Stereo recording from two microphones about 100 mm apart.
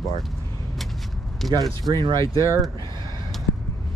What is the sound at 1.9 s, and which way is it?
Speech, 40° right (ahead or behind).